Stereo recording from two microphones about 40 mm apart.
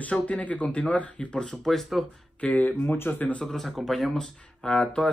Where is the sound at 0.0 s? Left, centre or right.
Left.